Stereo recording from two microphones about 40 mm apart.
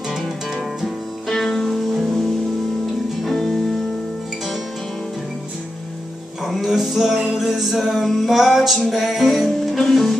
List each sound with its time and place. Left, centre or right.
1.7 s music: centre
3.3 s music: centre
6.4 s music: centre